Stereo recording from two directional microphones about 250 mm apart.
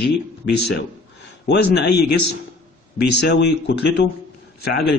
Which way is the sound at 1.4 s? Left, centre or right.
Left.